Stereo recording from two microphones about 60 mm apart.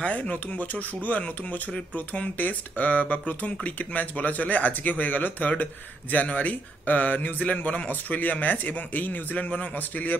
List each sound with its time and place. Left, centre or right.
0.0 s speech: left